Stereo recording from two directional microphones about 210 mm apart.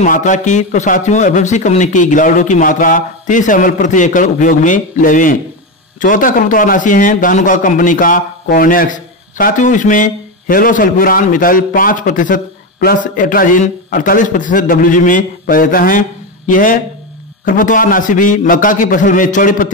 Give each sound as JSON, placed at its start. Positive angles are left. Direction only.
{"t": 0.0, "sound": "a man's voice", "side_deg": 35}